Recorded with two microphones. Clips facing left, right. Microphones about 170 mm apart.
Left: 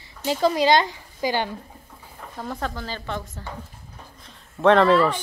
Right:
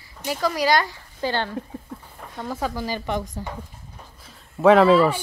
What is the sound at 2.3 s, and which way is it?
Speech, centre (ahead or behind).